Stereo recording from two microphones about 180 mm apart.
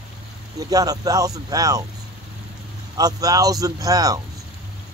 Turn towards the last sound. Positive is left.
turn(degrees=-20)  # may be behind; listen again after turning